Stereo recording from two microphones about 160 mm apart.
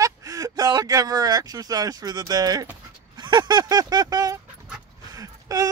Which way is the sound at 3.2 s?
25° right (ahead or behind).